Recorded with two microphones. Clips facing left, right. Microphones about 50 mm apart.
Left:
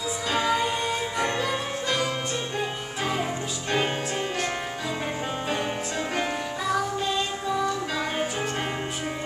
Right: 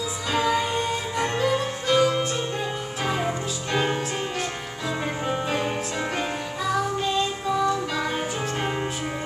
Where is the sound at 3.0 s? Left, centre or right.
Centre.